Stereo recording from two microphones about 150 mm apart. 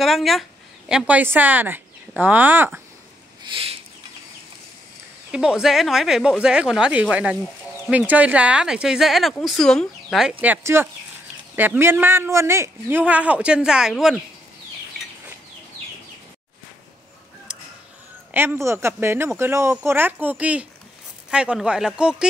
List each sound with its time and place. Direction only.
0.0 s speech: centre (ahead or behind)
3.4 s a sound: 40° right (ahead or behind)
5.3 s speech: 5° right (ahead or behind)
10.4 s a man's voice: 15° right (ahead or behind)
18.3 s a man's voice: 15° right (ahead or behind)